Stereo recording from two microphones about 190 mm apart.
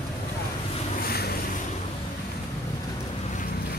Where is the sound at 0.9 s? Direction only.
50° left (ahead or behind).